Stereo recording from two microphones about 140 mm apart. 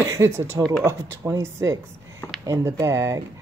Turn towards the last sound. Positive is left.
turn(degrees=-20)  # may be behind; listen again after turning